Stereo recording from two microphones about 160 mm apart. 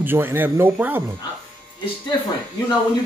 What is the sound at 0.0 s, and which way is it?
Speech, 15° right (ahead or behind).